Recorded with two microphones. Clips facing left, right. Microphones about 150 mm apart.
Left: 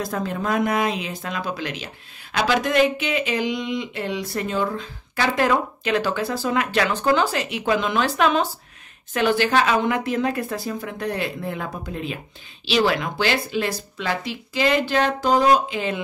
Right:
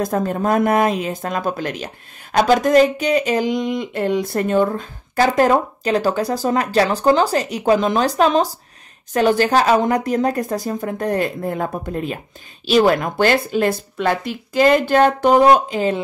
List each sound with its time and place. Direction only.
0.0 s speech: 45° right (ahead or behind)